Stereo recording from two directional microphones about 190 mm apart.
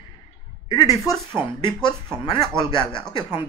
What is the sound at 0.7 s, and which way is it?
Speech, 20° left (ahead or behind).